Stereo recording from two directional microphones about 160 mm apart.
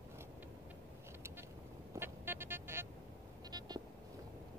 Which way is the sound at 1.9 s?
15° right (ahead or behind).